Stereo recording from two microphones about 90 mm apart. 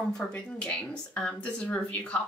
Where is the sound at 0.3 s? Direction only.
10° left (ahead or behind).